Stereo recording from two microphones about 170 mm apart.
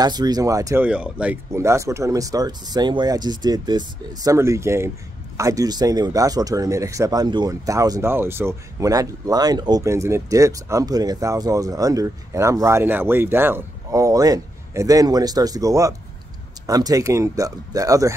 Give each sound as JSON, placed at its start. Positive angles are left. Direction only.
{"t": 0.0, "sound": "speech", "side_deg": -25}
{"t": 0.8, "sound": "speech", "side_deg": -5}